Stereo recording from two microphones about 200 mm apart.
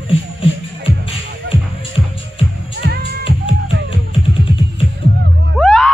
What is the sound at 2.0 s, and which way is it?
Music, 10° right (ahead or behind).